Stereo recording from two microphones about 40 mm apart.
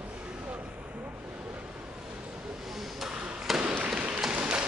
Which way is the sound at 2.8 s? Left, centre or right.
Centre.